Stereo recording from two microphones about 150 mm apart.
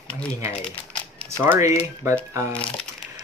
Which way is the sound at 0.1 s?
10° left (ahead or behind).